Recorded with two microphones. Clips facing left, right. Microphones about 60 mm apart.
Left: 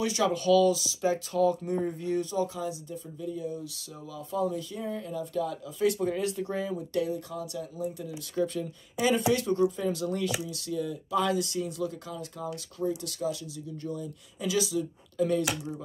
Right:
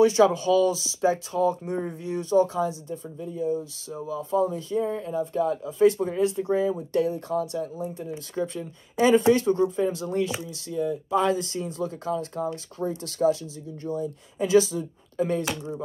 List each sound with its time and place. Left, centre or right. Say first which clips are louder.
0.0 s speech: right 8 dB; right
6.9 s speech: right 6 dB; right